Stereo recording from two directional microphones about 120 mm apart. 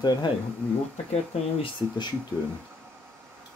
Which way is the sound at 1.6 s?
35° left (ahead or behind).